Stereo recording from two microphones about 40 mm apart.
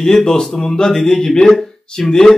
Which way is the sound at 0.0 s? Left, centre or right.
Centre.